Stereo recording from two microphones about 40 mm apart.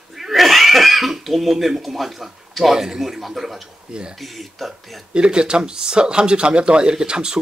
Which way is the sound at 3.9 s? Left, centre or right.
Right.